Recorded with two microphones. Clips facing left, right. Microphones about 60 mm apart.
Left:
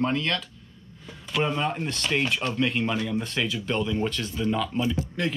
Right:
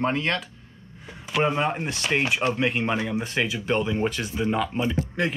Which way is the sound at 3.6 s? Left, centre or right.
Right.